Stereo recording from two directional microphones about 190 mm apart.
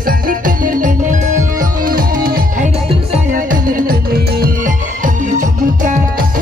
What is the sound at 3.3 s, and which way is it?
Music, 45° right (ahead or behind).